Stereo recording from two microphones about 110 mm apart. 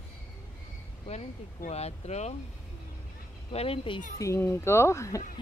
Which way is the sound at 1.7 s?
80° left.